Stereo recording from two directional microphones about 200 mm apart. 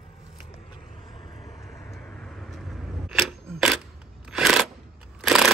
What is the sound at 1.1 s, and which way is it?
Vehicle, 25° left (ahead or behind).